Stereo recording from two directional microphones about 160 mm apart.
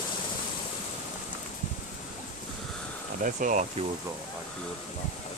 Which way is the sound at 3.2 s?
55° right (ahead or behind).